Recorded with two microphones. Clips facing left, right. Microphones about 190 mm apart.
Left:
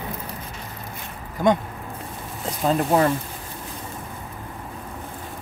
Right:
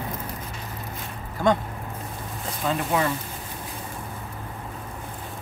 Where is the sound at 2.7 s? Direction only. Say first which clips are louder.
Left 5 dB; 45° left (ahead or behind).